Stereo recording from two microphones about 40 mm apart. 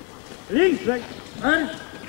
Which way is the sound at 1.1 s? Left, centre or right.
Left.